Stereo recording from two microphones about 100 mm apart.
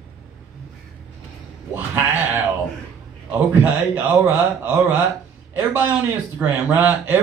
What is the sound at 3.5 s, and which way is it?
Speech, 20° right (ahead or behind).